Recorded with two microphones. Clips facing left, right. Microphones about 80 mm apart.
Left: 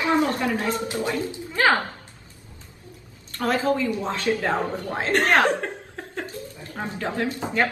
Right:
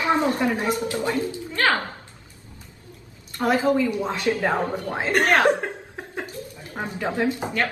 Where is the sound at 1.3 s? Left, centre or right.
Centre.